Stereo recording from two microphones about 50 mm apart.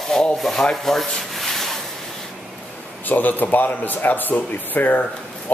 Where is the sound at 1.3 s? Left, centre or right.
Centre.